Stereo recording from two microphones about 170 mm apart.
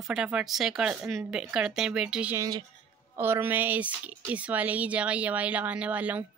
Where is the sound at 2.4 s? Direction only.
25° right (ahead or behind).